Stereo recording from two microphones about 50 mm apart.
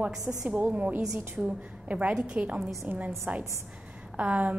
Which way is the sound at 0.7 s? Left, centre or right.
Right.